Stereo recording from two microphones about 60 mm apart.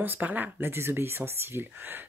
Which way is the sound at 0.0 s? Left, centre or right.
Right.